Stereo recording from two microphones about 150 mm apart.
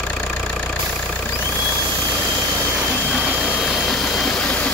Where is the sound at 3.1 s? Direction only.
5° right (ahead or behind).